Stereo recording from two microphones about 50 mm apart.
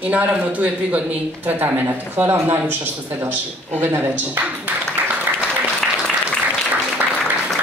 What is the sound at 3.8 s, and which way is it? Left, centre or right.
Speech, right.